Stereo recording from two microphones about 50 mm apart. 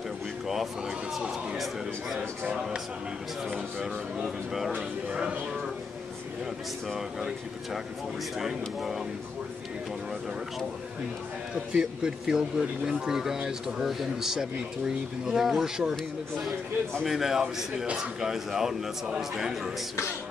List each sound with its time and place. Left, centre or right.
0.5 s a sound: centre
2.1 s speech: centre
7.0 s speech: centre
11.5 s speech: centre